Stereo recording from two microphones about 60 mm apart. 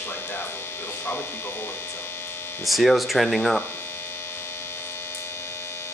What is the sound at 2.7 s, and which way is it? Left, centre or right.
Speech, centre.